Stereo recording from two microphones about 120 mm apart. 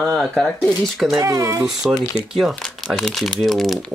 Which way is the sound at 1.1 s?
25° right (ahead or behind).